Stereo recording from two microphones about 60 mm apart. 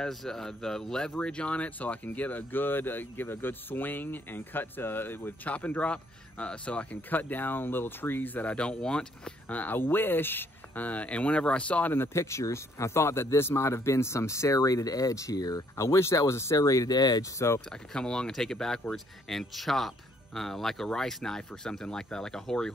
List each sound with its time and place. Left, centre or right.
0.0 s speech: centre; by 5.5 s left
5.5 s speech: left
9.5 s speech: left
11.9 s speech: left
12.2 s speech: left
15.7 s speech: left
16.5 s speech: left
17.6 s speech: centre